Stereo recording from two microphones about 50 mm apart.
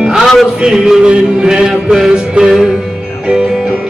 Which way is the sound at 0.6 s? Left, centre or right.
Centre.